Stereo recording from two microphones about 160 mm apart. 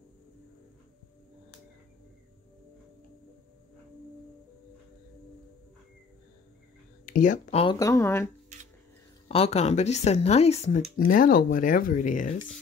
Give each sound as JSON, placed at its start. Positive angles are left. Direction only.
{"t": 7.1, "sound": "speech", "side_deg": 55}
{"t": 7.8, "sound": "speech", "side_deg": 15}
{"t": 9.3, "sound": "speech", "side_deg": 40}
{"t": 11.1, "sound": "speech", "side_deg": 60}